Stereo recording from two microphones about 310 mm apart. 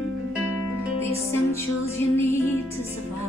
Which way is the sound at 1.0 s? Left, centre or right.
Centre.